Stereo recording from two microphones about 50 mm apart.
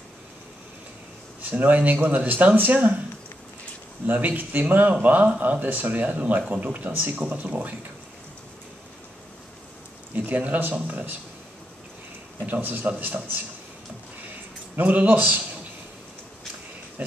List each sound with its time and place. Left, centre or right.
1.4 s speech: right
4.1 s speech: right
10.1 s speech: right
12.4 s speech: right
14.8 s speech: right